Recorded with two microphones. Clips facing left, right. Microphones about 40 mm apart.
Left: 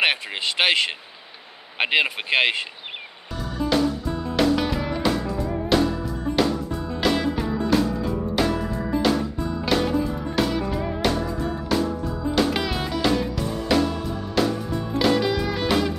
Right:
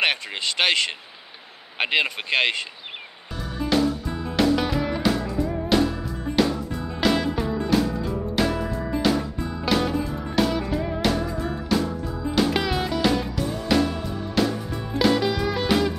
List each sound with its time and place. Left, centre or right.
0.0 s speech: centre
3.6 s music: centre